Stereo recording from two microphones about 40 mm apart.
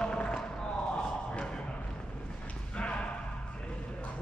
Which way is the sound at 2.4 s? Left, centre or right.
Left.